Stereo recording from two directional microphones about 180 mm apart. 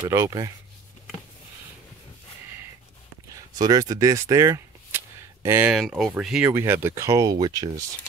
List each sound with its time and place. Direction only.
0.1 s speech: 20° right (ahead or behind)
3.3 s a sound: 20° right (ahead or behind)
5.8 s speech: centre (ahead or behind); by 7.8 s 20° right (ahead or behind)